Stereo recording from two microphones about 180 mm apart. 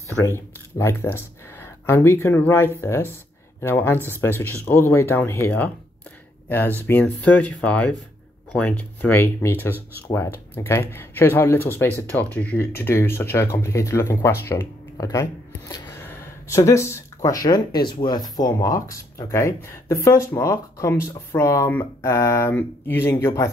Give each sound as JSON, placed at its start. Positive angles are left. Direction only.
{"t": 0.1, "sound": "speech", "side_deg": 15}
{"t": 6.9, "sound": "speech", "side_deg": 10}